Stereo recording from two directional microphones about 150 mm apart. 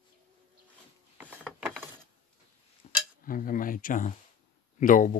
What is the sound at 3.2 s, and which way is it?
Speech, 65° left (ahead or behind).